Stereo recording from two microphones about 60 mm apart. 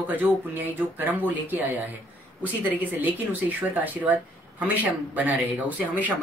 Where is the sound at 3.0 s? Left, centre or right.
Right.